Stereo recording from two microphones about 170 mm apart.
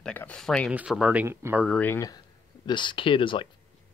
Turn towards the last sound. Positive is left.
turn(degrees=30)  # may be behind; listen again after turning